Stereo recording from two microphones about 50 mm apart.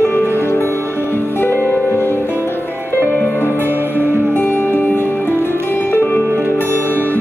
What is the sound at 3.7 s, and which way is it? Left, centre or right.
Music, right.